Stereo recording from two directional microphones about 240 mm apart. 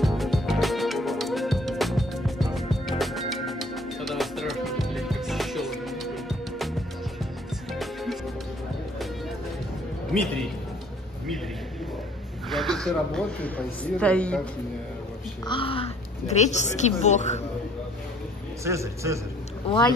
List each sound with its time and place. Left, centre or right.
0.0 s music: centre
7.7 s music: centre
12.4 s speech: centre
15.4 s speech: left
18.6 s a man's voice: centre
19.7 s speech: left